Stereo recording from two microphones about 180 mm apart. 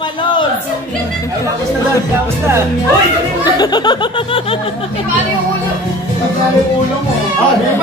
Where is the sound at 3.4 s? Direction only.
25° left (ahead or behind).